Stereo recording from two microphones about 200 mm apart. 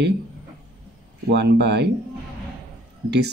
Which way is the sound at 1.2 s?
55° right (ahead or behind).